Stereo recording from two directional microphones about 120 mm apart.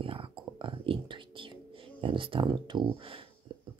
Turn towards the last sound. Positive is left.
turn(degrees=-45)  # may be behind; listen again after turning